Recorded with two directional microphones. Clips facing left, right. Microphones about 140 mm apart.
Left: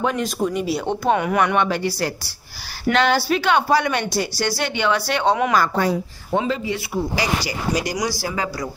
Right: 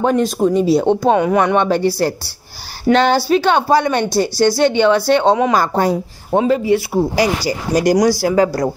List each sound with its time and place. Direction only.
0.0 s a woman's voice: 35° right (ahead or behind); by 8.7 s 55° right (ahead or behind)